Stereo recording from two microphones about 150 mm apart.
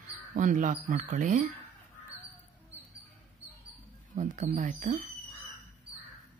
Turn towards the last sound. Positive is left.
turn(degrees=-55)  # may be behind; listen again after turning